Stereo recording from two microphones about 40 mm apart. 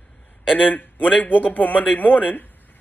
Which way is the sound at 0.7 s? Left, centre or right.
Left.